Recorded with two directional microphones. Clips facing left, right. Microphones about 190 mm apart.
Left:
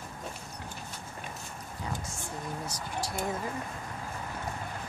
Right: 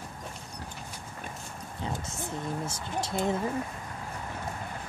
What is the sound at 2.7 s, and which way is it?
Speech, 25° right (ahead or behind).